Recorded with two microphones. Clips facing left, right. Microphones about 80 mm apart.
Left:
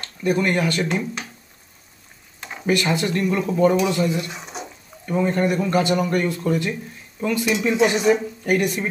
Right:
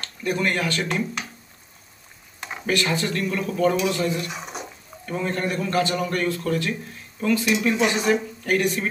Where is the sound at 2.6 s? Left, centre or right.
Centre.